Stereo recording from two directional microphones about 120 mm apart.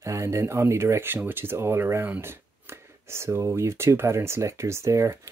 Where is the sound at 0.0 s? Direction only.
25° right (ahead or behind).